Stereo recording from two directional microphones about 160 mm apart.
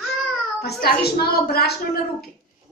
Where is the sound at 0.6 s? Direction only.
75° left (ahead or behind).